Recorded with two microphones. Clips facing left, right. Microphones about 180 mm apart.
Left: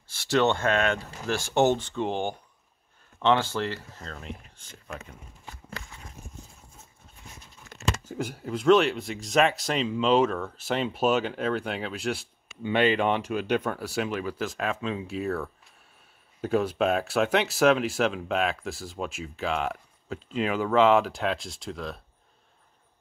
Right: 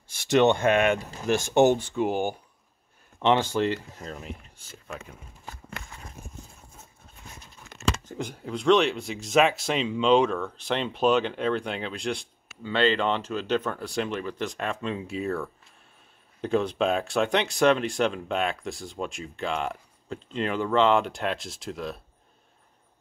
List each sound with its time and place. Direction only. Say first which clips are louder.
0.1 s speech: right 3 dB; 20° right (ahead or behind)
5.4 s a sound: right 1 dB; 45° right (ahead or behind)
8.0 s speech: left 2 dB; 5° left (ahead or behind)